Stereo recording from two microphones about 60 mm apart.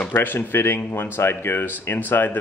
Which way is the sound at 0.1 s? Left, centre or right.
Left.